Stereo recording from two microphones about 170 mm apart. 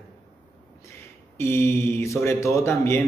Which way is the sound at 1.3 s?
15° left (ahead or behind).